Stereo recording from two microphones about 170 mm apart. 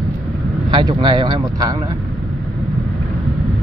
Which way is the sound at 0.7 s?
25° right (ahead or behind).